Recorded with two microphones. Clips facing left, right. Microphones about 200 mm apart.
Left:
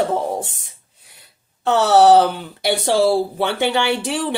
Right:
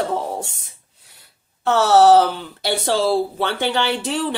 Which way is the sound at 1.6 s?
15° left (ahead or behind).